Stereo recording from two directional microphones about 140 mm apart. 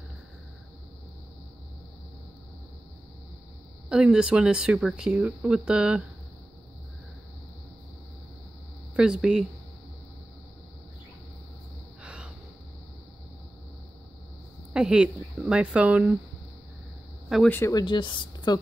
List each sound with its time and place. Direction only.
3.9 s speech: 5° right (ahead or behind)
8.9 s speech: 5° right (ahead or behind)
12.0 s gasp: 5° right (ahead or behind)
14.7 s speech: 5° right (ahead or behind)
17.5 s speech: 15° left (ahead or behind)
17.7 s speech: 35° left (ahead or behind)